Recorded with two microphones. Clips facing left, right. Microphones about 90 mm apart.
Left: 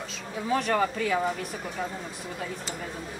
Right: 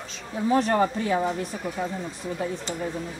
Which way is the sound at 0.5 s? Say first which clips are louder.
Right 3 dB; 35° right (ahead or behind).